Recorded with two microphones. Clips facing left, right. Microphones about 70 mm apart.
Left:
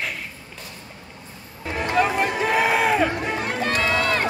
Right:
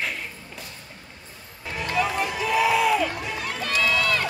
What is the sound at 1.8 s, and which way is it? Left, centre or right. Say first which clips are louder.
Music: left 4 dB; left.